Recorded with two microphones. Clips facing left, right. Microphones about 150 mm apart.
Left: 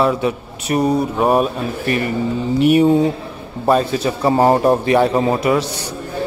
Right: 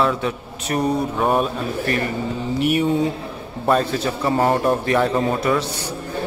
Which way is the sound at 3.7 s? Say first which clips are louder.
Left 3 dB; 10° left (ahead or behind).